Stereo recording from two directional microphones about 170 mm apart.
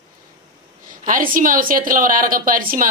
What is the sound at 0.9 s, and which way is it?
Speech, 55° right (ahead or behind).